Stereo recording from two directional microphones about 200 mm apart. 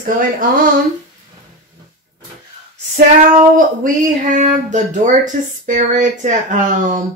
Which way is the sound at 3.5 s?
40° right (ahead or behind).